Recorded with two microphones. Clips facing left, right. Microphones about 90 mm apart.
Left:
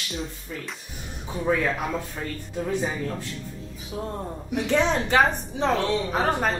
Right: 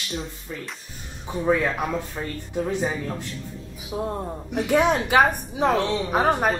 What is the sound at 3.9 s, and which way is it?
Speech, 25° right (ahead or behind).